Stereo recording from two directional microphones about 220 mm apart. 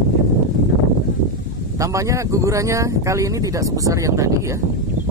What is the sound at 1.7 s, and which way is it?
Speech, 15° right (ahead or behind).